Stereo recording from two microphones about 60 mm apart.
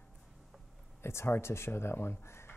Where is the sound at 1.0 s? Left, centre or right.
Left.